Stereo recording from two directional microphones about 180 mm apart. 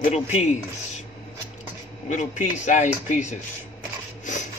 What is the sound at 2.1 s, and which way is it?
Speech, 40° left (ahead or behind).